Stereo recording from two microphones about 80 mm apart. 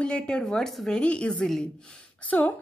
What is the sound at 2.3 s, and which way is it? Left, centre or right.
Speech, left.